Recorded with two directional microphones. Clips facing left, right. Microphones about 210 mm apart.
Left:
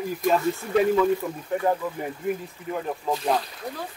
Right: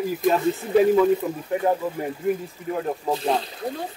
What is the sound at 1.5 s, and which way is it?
Speech, 5° right (ahead or behind).